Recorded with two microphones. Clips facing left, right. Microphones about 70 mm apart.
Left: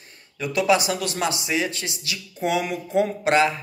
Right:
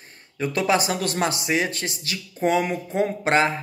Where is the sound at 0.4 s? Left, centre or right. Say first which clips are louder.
Left 1 dB; right.